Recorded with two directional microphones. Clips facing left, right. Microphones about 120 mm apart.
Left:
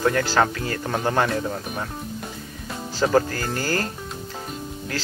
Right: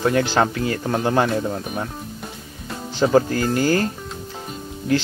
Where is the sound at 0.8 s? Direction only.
5° right (ahead or behind).